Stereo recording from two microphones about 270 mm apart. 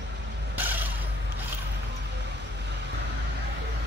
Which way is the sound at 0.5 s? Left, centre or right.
Centre.